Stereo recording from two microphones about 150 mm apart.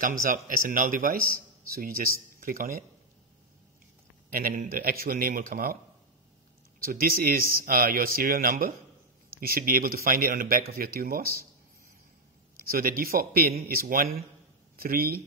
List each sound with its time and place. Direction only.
0.3 s speech: 65° right (ahead or behind)
4.3 s speech: 70° right (ahead or behind)
6.8 s speech: 75° right (ahead or behind)
10.7 s speech: 85° right
12.7 s speech: 75° right (ahead or behind)